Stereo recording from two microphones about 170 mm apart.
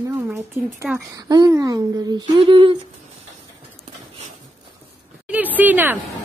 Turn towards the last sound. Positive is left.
turn(degrees=-10)  # may be behind; listen again after turning